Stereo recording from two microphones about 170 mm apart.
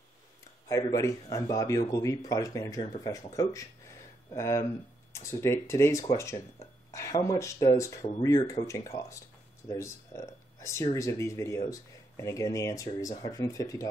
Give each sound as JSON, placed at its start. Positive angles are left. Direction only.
{"t": 0.7, "sound": "speech", "side_deg": 20}